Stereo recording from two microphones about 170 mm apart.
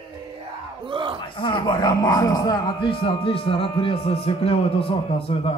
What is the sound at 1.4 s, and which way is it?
Speech, 30° left (ahead or behind).